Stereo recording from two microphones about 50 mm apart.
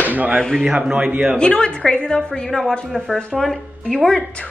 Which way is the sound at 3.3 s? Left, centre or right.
Centre.